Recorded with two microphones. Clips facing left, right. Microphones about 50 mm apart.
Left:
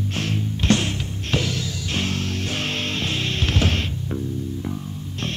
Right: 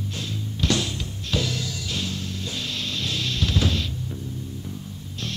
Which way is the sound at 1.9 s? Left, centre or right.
Left.